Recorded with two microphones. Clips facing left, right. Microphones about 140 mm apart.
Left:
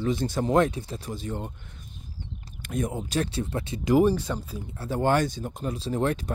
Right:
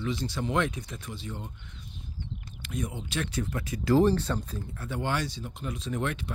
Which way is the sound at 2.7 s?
45° left (ahead or behind).